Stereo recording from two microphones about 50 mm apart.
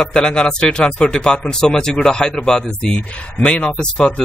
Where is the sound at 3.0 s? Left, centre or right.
Left.